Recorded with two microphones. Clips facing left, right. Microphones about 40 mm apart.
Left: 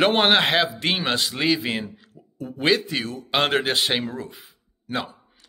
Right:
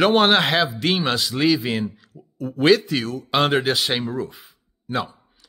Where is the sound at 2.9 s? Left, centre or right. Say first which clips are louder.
Right 3 dB; left.